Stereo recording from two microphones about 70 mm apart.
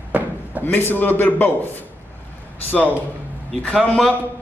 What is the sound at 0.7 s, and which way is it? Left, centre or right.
A man's voice, left.